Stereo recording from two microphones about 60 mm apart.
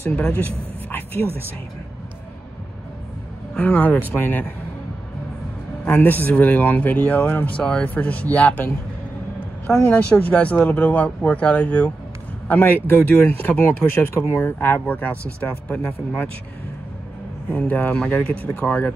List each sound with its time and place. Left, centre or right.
0.8 s a sound: left
3.5 s speech: left
5.9 s speech: left
9.8 s speech: left
12.4 s speech: left
17.5 s speech: left